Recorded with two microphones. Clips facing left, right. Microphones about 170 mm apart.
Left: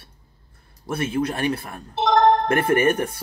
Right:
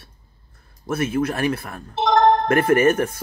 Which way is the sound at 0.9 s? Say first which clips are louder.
Right 2 dB; 30° left (ahead or behind).